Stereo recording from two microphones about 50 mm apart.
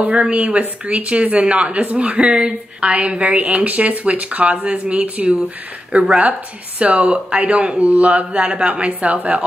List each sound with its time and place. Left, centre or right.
0.0 s speech: right